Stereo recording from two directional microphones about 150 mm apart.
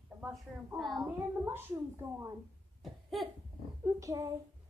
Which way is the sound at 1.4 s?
15° right (ahead or behind).